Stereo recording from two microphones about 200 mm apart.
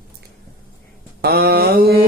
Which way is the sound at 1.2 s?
50° right (ahead or behind).